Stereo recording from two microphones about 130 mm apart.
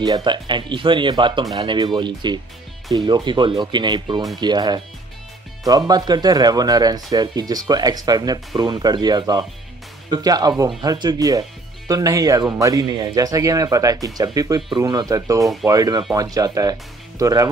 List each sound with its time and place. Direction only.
0.0 s speech: 35° right (ahead or behind)